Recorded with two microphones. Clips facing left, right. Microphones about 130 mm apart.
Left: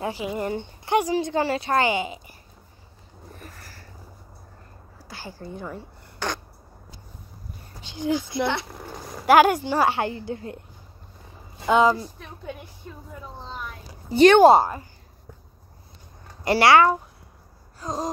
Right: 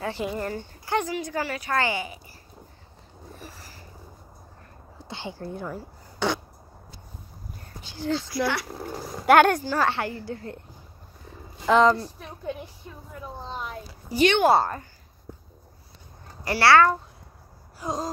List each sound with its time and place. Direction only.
0.2 s a woman's voice: 15° left (ahead or behind)
3.3 s a sound: 5° right (ahead or behind)
5.0 s a woman's voice: 25° right (ahead or behind)
5.4 s speech: centre (ahead or behind)
6.1 s a sound: 10° right (ahead or behind)
7.8 s a woman's voice: 20° left (ahead or behind)
8.7 s speech: centre (ahead or behind)
9.7 s a woman's voice: 15° left (ahead or behind)
11.6 s speech: 5° left (ahead or behind)
13.2 s speech: 10° right (ahead or behind)
14.1 s speech: 35° left (ahead or behind)
14.5 s speech: 15° left (ahead or behind)
16.4 s speech: 20° left (ahead or behind)
17.8 s speech: 10° right (ahead or behind)